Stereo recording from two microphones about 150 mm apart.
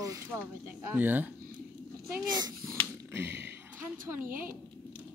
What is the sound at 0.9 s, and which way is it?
Speech, 10° right (ahead or behind).